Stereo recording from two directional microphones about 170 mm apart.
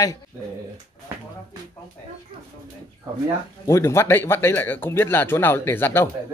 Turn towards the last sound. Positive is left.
turn(degrees=10)  # may be behind; listen again after turning